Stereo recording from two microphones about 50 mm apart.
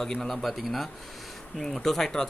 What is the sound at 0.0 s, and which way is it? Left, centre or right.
Speech, centre.